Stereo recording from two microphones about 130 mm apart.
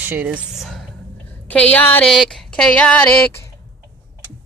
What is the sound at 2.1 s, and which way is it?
Speech, 5° left (ahead or behind).